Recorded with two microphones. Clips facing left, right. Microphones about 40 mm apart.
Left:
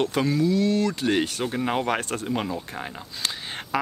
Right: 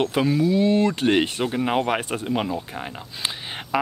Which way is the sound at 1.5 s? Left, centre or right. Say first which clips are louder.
Right 3 dB; centre.